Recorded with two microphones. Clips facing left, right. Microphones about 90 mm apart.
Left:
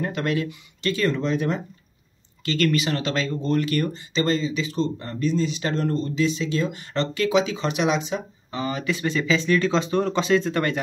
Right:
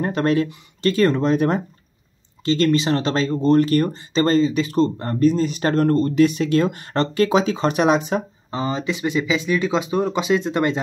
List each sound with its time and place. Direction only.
0.0 s speech: 35° right (ahead or behind)
2.4 s speech: 30° right (ahead or behind); by 8.2 s 45° right (ahead or behind)
8.5 s speech: 30° right (ahead or behind)